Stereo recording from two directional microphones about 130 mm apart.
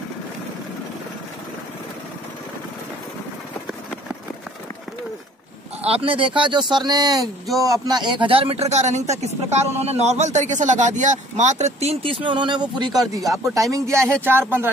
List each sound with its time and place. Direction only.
5.8 s speech: 50° right (ahead or behind); by 14.4 s 15° right (ahead or behind)